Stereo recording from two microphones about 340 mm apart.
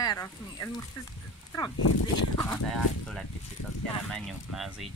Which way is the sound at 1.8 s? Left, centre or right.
Left.